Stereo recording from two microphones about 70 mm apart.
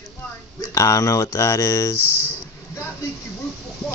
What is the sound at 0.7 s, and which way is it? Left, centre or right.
Speech, left.